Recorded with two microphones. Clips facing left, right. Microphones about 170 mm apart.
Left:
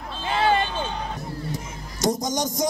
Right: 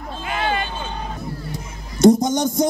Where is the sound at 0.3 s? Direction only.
30° left (ahead or behind).